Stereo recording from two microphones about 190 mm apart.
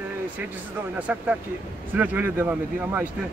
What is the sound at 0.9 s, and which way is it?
Speech, 10° right (ahead or behind).